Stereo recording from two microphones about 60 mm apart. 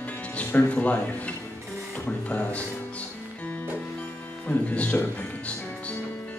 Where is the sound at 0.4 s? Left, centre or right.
Left.